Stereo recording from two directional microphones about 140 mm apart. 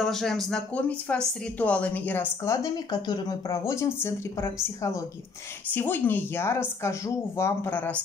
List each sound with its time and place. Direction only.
0.0 s speech: centre (ahead or behind)